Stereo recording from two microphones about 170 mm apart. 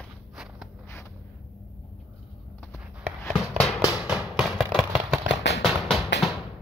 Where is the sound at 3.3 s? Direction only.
Centre (ahead or behind).